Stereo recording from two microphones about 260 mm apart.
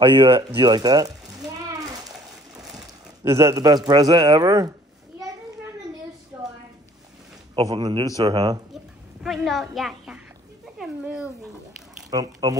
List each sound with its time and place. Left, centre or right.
0.0 s speech: centre
3.3 s speech: centre
6.3 s a sound: centre
7.5 s speech: centre
9.2 s a woman's voice: centre
12.1 s speech: centre